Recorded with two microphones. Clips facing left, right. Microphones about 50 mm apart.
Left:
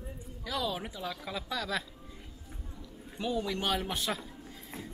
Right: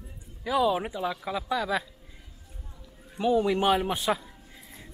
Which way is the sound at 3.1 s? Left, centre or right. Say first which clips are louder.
Right 9 dB; centre.